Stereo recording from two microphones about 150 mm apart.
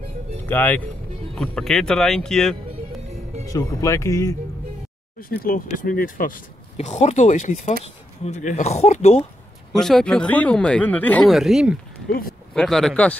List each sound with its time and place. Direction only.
0.5 s speech: 10° left (ahead or behind)
3.4 s speech: 20° left (ahead or behind)
5.3 s speech: 70° left (ahead or behind); by 9.2 s 45° left (ahead or behind)
9.7 s speech: 5° left (ahead or behind)
11.3 s speech: centre (ahead or behind)
12.1 s speech: 75° left (ahead or behind)
12.5 s speech: 5° left (ahead or behind)